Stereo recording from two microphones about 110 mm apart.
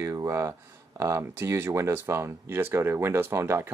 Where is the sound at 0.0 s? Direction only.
30° right (ahead or behind).